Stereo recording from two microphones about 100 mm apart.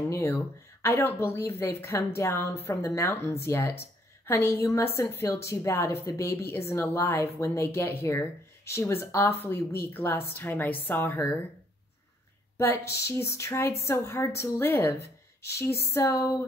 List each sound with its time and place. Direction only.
0.1 s a woman's voice: 25° left (ahead or behind)
12.5 s a woman's voice: 25° left (ahead or behind)